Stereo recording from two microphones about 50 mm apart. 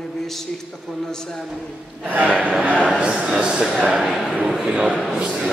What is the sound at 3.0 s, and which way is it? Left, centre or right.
Speech, centre.